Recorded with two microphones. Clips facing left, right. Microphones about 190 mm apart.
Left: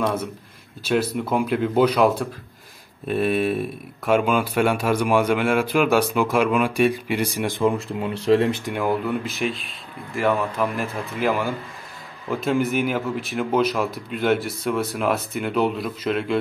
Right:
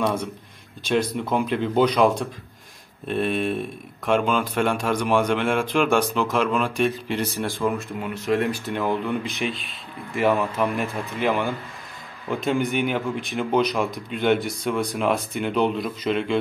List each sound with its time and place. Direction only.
0.0 s speech: 5° left (ahead or behind); by 8.7 s 20° left (ahead or behind)
8.7 s speech: 5° left (ahead or behind)